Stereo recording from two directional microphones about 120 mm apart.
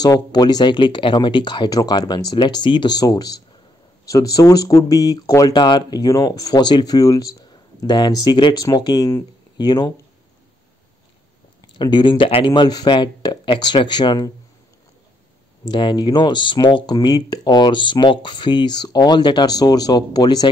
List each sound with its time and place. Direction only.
0.0 s speech: 35° left (ahead or behind)
11.7 s speech: 40° left (ahead or behind)
15.6 s speech: 40° left (ahead or behind)